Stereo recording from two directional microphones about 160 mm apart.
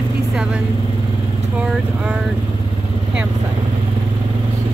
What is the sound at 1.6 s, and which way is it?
Speech, 5° right (ahead or behind).